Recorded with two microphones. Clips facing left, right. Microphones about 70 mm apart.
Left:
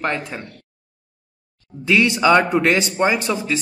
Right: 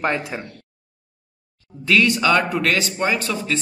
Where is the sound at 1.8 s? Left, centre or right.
Centre.